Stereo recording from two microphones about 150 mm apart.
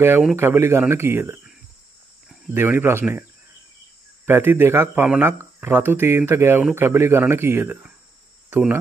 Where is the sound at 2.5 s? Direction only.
15° right (ahead or behind).